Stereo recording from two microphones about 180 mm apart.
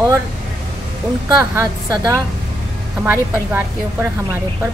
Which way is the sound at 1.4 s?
20° right (ahead or behind).